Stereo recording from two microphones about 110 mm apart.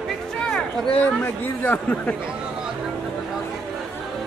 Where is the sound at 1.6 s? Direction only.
15° left (ahead or behind).